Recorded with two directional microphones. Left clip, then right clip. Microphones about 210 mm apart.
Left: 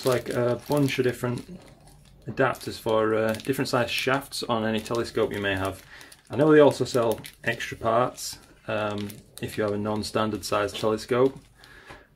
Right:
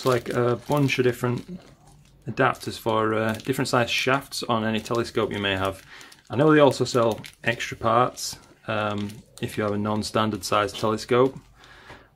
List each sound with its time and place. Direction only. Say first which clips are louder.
0.0 s speech: right 2 dB; 25° right (ahead or behind)